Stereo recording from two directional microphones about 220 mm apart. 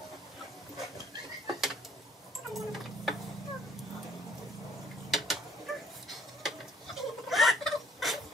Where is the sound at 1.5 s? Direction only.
Centre (ahead or behind).